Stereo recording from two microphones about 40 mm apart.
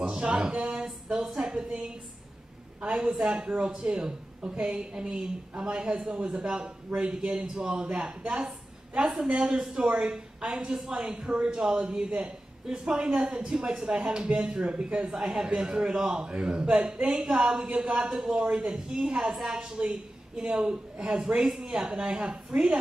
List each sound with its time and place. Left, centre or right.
0.0 s a woman's voice: centre
0.7 s a sound: centre
2.8 s a woman's voice: right
3.2 s a man's voice: centre
3.4 s a woman's voice: right
8.3 s a woman's voice: centre
9.8 s a woman's voice: right
15.1 s a man's voice: centre
19.0 s a man's voice: centre
19.9 s speech: right
20.6 s a man's voice: centre
22.5 s a woman's voice: right